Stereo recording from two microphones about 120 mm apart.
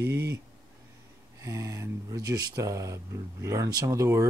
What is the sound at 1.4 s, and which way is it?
Speech, 25° right (ahead or behind).